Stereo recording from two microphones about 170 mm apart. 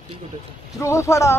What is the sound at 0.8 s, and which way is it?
Speech, 15° left (ahead or behind).